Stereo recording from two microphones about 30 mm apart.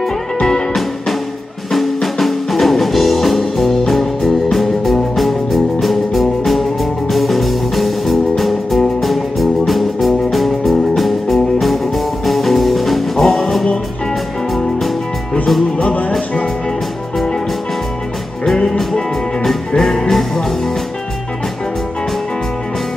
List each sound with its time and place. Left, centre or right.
0.4 s music: centre
1.7 s music: centre
18.4 s music: centre